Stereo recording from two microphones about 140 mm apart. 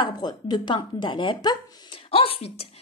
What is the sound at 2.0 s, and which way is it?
Speech, 40° left (ahead or behind).